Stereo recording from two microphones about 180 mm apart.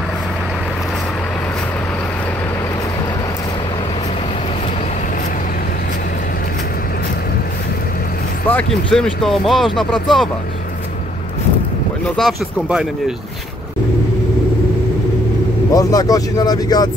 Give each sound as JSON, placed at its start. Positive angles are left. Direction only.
{"t": 8.5, "sound": "speech", "side_deg": 5}
{"t": 12.2, "sound": "speech", "side_deg": 0}
{"t": 15.7, "sound": "speech", "side_deg": 20}